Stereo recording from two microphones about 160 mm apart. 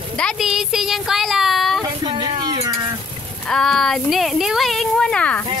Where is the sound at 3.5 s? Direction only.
5° left (ahead or behind).